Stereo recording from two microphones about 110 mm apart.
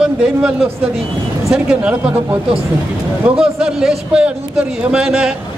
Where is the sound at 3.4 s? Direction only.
5° right (ahead or behind).